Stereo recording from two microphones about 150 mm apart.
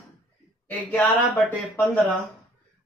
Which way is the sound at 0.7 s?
10° left (ahead or behind).